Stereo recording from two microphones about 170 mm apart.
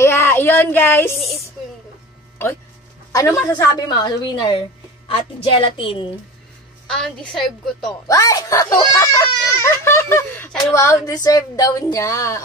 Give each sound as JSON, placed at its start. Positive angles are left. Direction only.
{"t": 0.0, "sound": "a sound", "side_deg": 15}
{"t": 3.1, "sound": "a woman's voice", "side_deg": 20}
{"t": 6.9, "sound": "a woman's voice", "side_deg": 5}
{"t": 8.1, "sound": "a child's voice", "side_deg": 20}